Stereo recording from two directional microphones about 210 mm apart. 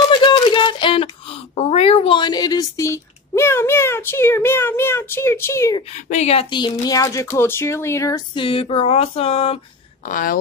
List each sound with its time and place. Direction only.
0.1 s speech: 25° left (ahead or behind)
6.0 s speech: 30° left (ahead or behind)
10.0 s speech: 40° left (ahead or behind)